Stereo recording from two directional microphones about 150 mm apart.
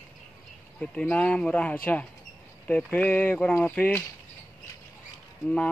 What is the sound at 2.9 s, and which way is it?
Speech, 10° left (ahead or behind).